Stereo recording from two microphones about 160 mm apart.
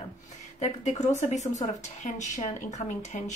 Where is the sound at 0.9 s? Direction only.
45° left (ahead or behind).